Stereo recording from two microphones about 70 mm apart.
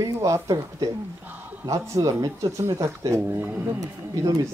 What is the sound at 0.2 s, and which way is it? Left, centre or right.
Speech, right.